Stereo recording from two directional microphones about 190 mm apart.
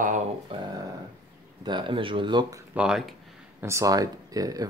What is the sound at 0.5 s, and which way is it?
Speech, 25° right (ahead or behind).